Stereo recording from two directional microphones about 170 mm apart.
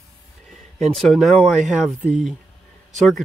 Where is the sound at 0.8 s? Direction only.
Centre (ahead or behind).